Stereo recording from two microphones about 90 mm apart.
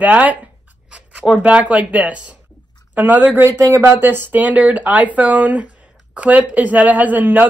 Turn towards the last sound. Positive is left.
turn(degrees=-20)  # may be behind; listen again after turning